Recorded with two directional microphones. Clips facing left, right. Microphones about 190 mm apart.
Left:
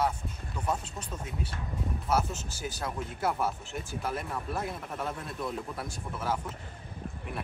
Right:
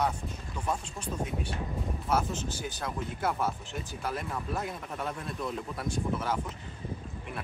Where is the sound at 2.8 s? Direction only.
10° left (ahead or behind).